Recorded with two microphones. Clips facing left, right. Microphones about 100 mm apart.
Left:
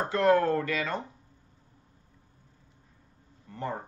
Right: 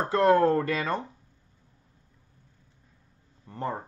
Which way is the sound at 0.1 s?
35° right (ahead or behind).